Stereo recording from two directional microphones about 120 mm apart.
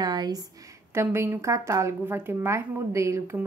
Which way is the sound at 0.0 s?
35° right (ahead or behind).